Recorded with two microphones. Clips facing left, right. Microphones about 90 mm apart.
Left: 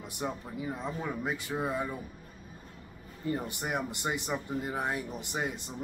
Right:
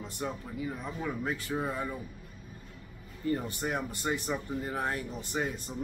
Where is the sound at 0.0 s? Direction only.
20° left (ahead or behind).